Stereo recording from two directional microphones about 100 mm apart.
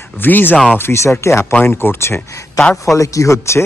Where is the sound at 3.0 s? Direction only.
30° left (ahead or behind).